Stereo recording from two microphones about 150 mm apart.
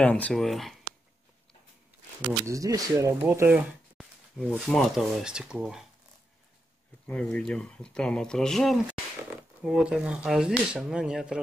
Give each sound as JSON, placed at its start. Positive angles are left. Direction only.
{"t": 0.0, "sound": "speech", "side_deg": 10}
{"t": 2.4, "sound": "speech", "side_deg": -20}
{"t": 3.5, "sound": "a sound", "side_deg": 0}
{"t": 4.6, "sound": "speech", "side_deg": 0}
{"t": 7.1, "sound": "speech", "side_deg": 10}